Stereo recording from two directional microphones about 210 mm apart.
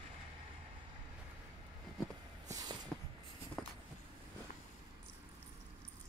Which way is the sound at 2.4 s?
15° right (ahead or behind).